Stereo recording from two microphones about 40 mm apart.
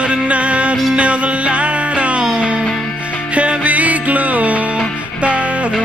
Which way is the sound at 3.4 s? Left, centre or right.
Right.